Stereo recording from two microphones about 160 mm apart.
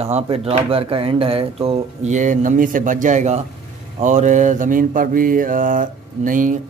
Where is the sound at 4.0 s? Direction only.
50° right (ahead or behind).